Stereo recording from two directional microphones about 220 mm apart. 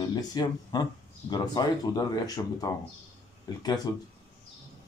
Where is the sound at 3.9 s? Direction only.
15° left (ahead or behind).